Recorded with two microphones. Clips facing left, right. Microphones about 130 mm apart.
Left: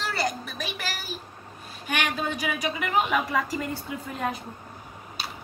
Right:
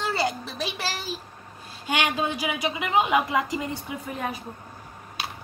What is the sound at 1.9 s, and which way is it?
A woman's voice, 20° right (ahead or behind).